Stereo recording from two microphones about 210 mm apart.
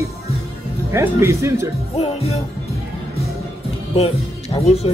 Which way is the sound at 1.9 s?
30° left (ahead or behind).